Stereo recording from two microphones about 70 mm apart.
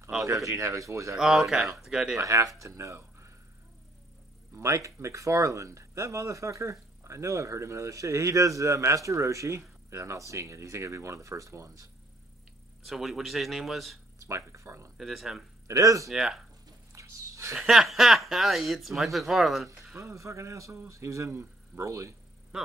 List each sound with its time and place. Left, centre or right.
0.2 s speech: right
1.1 s speech: centre
2.1 s speech: right
4.6 s speech: right
12.8 s speech: centre
14.2 s speech: right
15.0 s speech: centre
15.6 s speech: right
16.1 s speech: centre
16.9 s a sound: right
17.6 s speech: centre
20.0 s speech: right